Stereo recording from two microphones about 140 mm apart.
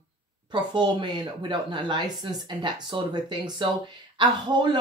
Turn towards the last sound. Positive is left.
turn(degrees=-35)  # may be behind; listen again after turning